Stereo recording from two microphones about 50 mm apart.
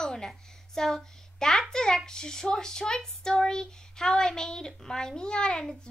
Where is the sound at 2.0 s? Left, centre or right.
Centre.